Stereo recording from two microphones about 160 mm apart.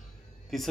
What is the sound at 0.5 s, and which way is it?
Speech, centre (ahead or behind).